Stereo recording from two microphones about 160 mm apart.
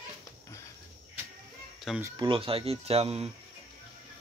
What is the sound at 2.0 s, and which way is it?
Speech, 20° right (ahead or behind).